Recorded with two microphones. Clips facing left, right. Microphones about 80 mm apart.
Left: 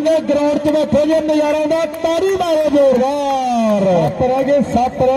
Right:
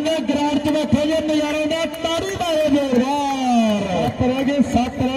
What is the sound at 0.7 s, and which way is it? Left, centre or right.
A man's voice, left.